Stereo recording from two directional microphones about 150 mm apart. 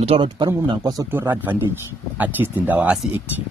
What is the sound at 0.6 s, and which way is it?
Speech, 25° right (ahead or behind).